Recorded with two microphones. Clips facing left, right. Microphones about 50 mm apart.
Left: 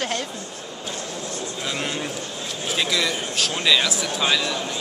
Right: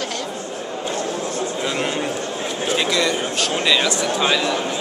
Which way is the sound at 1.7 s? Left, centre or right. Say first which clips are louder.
Right 3 dB; centre.